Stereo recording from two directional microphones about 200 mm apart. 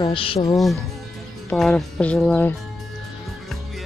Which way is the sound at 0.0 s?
25° left (ahead or behind).